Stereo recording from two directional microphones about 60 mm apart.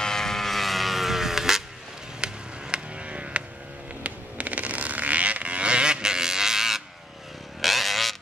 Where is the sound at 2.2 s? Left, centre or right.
Centre.